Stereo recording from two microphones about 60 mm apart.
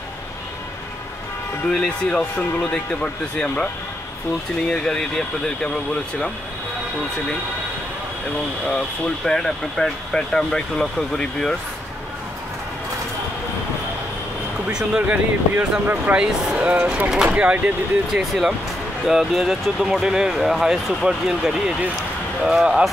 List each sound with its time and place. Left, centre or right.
1.7 s speech: centre
4.6 s speech: centre
8.6 s speech: centre
14.7 s speech: centre
15.0 s speech: right
19.0 s speech: centre